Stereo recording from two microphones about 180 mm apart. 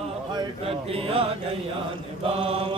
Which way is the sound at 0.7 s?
30° right (ahead or behind).